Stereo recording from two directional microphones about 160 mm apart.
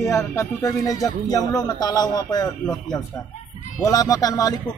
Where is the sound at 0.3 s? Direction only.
20° left (ahead or behind).